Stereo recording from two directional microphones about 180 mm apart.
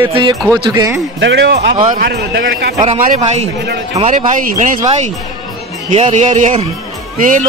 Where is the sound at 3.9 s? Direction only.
40° right (ahead or behind).